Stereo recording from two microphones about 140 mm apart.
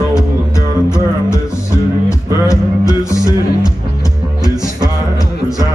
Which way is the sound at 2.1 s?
25° left (ahead or behind).